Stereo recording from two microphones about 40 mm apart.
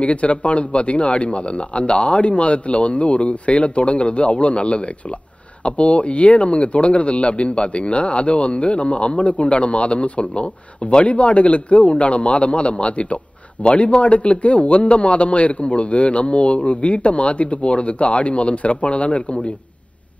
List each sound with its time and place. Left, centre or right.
0.0 s a man's voice: left